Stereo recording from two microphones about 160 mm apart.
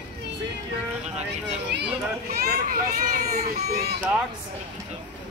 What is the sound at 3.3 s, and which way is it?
Speech, 45° right (ahead or behind).